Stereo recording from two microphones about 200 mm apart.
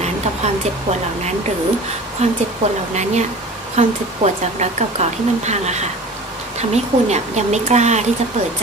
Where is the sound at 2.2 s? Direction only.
35° right (ahead or behind).